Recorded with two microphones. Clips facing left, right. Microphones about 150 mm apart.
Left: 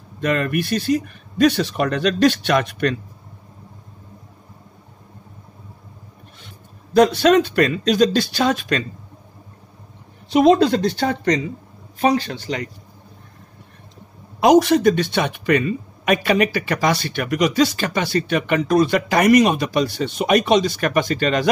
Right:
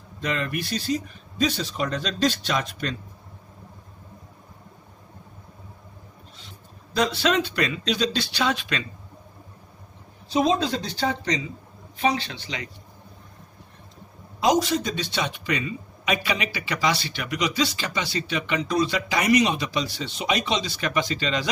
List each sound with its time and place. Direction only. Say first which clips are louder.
0.2 s speech: left 7 dB; 55° left (ahead or behind)
6.4 s speech: left 3 dB; 50° left (ahead or behind)
10.3 s speech: left 8 dB; 65° left (ahead or behind); by 12.6 s 45° left (ahead or behind)
14.4 s speech: left 9 dB; 60° left (ahead or behind)